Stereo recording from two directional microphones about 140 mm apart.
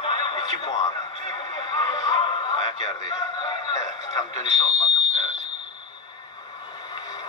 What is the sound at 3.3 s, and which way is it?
Speech, 35° left (ahead or behind).